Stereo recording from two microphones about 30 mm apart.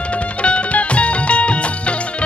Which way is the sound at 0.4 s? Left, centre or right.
Left.